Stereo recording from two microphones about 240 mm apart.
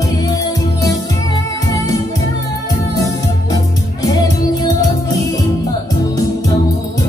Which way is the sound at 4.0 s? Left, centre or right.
Centre.